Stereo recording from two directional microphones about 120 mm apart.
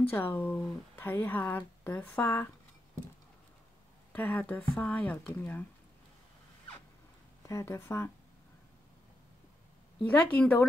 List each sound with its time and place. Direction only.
0.1 s speech: 15° left (ahead or behind)
4.1 s speech: 15° left (ahead or behind)
7.4 s speech: 20° left (ahead or behind)
10.0 s speech: 15° left (ahead or behind)